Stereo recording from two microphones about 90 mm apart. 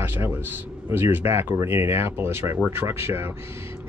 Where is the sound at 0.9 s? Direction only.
25° right (ahead or behind).